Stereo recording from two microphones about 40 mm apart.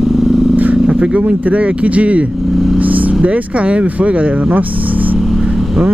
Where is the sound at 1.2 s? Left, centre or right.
Right.